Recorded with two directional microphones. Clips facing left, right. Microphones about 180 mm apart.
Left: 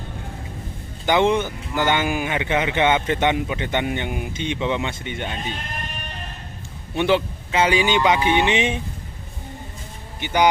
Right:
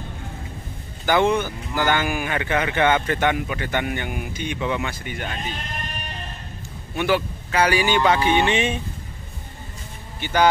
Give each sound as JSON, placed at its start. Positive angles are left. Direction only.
{"t": 1.0, "sound": "a man's voice", "side_deg": 20}
{"t": 7.0, "sound": "a man's voice", "side_deg": 20}